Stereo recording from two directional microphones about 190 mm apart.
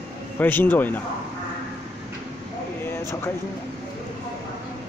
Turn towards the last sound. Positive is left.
turn(degrees=15)  # may be behind; listen again after turning